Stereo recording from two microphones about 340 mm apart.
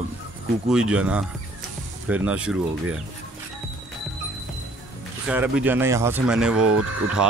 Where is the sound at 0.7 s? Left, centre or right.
Centre.